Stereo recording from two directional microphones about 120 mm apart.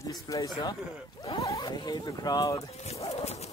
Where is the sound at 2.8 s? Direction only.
60° left (ahead or behind).